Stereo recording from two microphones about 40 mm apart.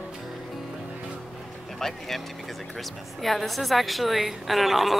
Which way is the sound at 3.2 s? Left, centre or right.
Centre.